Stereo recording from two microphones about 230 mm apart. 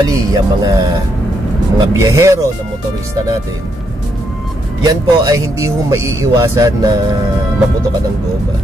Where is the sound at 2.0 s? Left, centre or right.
Centre.